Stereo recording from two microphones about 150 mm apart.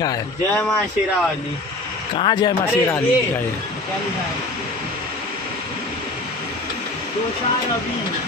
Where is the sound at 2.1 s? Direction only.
30° left (ahead or behind).